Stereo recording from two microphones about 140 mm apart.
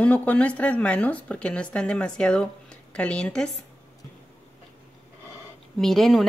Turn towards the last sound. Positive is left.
turn(degrees=0)  # may be behind; listen again after turning